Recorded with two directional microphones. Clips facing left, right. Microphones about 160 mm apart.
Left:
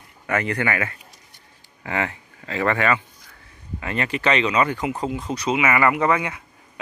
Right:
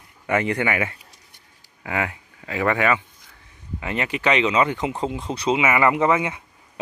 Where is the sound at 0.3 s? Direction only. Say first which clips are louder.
Right 2 dB; 20° right (ahead or behind).